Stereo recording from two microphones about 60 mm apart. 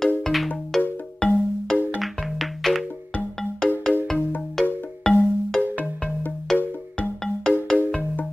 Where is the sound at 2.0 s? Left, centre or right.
Centre.